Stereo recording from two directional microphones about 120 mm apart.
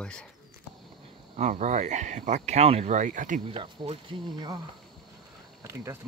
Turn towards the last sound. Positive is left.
turn(degrees=-25)  # may be behind; listen again after turning